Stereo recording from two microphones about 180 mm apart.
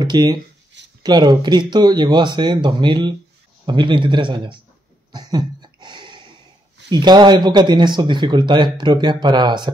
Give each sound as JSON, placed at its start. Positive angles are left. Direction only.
{"t": 0.0, "sound": "speech", "side_deg": -25}
{"t": 5.1, "sound": "a sound", "side_deg": -25}
{"t": 6.9, "sound": "speech", "side_deg": -25}